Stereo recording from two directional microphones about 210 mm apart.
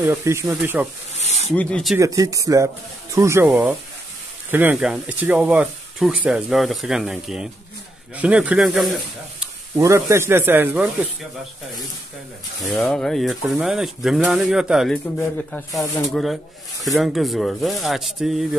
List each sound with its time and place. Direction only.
0.0 s speech: 10° right (ahead or behind)
1.2 s rub: 30° left (ahead or behind)
1.5 s speech: 5° left (ahead or behind)
2.0 s speech: 15° right (ahead or behind); by 8.9 s centre (ahead or behind)
9.8 s speech: 15° right (ahead or behind)
12.6 s speech: centre (ahead or behind)
15.1 s speech: 10° left (ahead or behind)